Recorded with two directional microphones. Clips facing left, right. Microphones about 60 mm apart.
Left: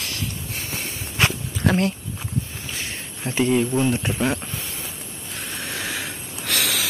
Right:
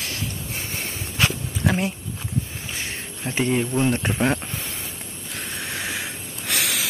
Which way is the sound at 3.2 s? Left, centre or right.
Right.